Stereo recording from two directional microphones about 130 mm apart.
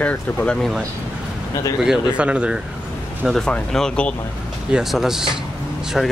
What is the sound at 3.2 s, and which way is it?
Speech, 5° left (ahead or behind).